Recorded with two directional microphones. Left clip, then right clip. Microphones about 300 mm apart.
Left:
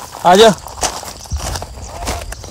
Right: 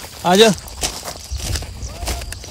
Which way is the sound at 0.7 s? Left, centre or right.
Centre.